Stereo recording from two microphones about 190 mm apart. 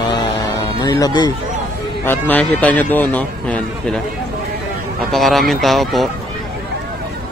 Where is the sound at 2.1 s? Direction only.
10° left (ahead or behind).